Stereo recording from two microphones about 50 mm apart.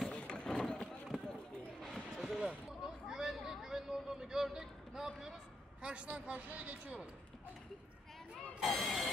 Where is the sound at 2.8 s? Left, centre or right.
Centre.